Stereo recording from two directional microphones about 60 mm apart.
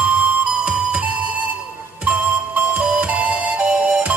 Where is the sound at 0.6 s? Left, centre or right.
Centre.